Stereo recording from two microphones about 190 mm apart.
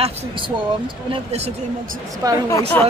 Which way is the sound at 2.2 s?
15° right (ahead or behind).